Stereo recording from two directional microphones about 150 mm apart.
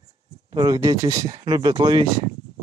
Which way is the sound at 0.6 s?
25° right (ahead or behind).